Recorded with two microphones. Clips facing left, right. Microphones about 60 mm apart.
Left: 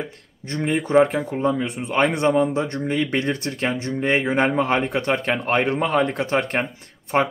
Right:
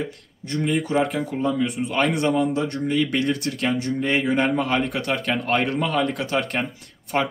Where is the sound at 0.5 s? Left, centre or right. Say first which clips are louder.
Left 1 dB; left.